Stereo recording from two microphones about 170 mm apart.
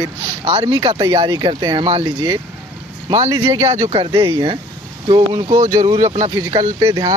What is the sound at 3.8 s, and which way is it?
Speech, 30° right (ahead or behind).